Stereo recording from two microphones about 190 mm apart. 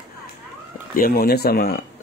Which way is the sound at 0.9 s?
50° left (ahead or behind).